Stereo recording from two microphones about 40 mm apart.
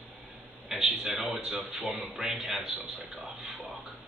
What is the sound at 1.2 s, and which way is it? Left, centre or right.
A man's voice, centre.